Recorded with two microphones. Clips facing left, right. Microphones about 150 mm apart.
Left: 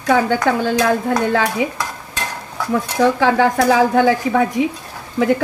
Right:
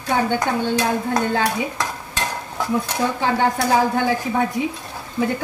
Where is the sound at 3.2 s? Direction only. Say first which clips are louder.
Left 5 dB; 90° left.